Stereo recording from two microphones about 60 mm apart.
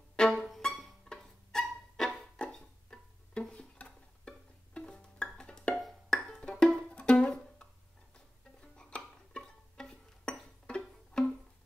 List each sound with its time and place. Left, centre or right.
0.1 s music: centre
6.0 s wood block: centre
6.9 s music: centre